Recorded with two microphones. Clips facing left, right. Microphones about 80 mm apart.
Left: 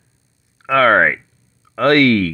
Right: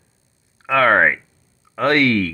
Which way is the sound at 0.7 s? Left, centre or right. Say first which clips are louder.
Left 2 dB; right.